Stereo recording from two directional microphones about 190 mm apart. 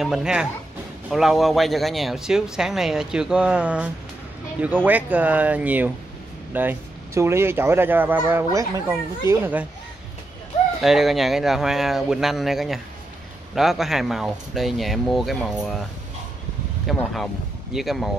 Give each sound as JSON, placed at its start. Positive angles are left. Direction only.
{"t": 0.0, "sound": "a child's voice", "side_deg": -5}
{"t": 10.8, "sound": "speech", "side_deg": 0}
{"t": 16.8, "sound": "speech", "side_deg": 0}